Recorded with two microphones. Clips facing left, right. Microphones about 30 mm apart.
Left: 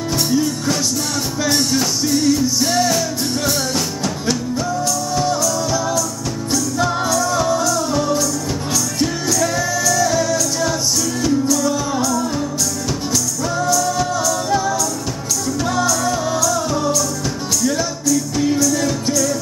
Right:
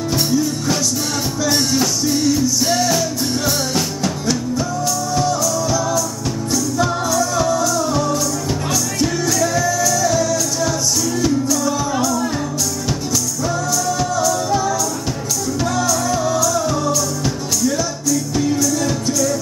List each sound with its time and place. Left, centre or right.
1.5 s music: centre
9.9 s music: centre
13.8 s music: centre
15.9 s music: centre
18.0 s music: centre
18.7 s music: centre